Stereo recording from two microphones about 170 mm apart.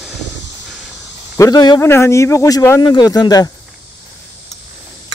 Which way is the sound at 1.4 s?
20° left (ahead or behind).